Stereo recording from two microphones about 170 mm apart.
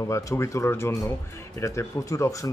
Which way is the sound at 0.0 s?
20° left (ahead or behind).